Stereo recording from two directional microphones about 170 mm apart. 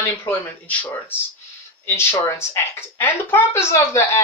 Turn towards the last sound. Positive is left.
turn(degrees=15)  # may be behind; listen again after turning